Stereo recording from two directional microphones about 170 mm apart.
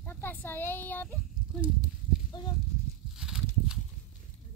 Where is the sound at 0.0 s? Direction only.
10° left (ahead or behind).